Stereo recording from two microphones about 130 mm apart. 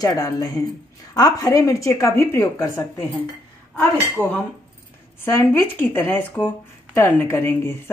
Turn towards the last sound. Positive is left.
turn(degrees=20)  # may be behind; listen again after turning